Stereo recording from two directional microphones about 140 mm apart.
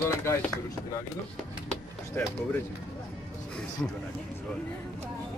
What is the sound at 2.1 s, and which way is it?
Speech, 15° left (ahead or behind).